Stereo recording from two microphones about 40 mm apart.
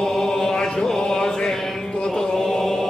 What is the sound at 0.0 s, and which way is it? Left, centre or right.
Chant, centre.